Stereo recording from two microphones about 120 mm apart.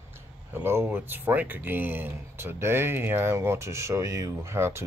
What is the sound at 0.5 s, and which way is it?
Speech, 20° right (ahead or behind).